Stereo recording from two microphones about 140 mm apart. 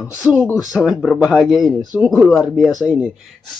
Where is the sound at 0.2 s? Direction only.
5° left (ahead or behind).